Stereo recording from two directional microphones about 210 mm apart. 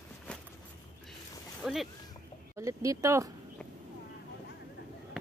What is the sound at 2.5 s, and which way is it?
Speech, 15° right (ahead or behind).